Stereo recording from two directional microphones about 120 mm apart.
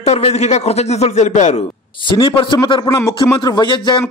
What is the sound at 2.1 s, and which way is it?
A man's voice, 45° left (ahead or behind).